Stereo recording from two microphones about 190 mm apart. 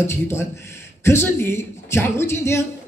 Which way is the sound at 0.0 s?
15° left (ahead or behind).